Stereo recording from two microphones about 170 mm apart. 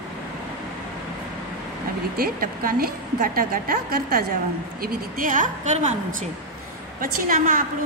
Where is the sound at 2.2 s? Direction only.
60° right (ahead or behind); by 6.0 s 45° right (ahead or behind).